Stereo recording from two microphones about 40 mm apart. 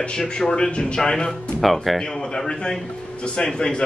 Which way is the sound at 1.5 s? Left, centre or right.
Centre.